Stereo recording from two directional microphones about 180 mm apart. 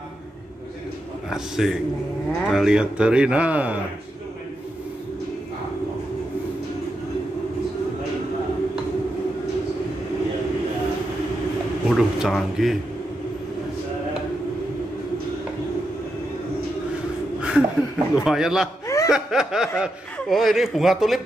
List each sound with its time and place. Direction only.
1.3 s a man's voice: centre (ahead or behind)
11.9 s a man's voice: centre (ahead or behind)
17.4 s a man's voice: 5° right (ahead or behind)
18.9 s chuckle: 15° left (ahead or behind)
19.1 s a man's voice: 5° right (ahead or behind)